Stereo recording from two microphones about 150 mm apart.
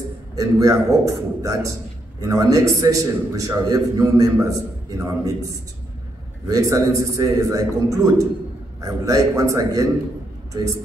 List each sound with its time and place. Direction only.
0.4 s a man's voice: 20° right (ahead or behind)
6.4 s a man's voice: 20° right (ahead or behind)